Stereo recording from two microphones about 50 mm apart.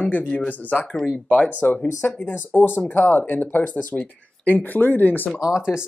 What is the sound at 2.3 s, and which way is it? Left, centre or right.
Speech, left.